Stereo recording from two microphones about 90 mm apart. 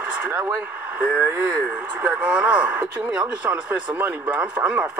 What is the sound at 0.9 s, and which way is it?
Speech, 15° right (ahead or behind).